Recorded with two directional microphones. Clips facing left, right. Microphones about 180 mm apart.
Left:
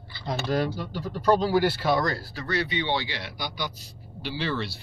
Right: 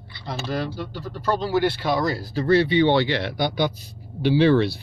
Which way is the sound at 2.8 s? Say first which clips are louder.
Right 10 dB; 60° right (ahead or behind).